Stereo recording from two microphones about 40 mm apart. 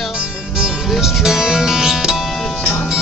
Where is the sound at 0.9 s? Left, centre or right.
Centre.